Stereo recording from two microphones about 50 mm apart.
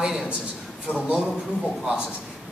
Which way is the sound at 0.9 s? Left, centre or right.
Left.